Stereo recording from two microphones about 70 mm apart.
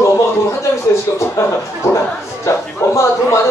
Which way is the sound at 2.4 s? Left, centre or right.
Left.